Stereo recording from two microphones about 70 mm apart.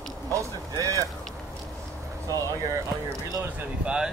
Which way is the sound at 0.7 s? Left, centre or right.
Right.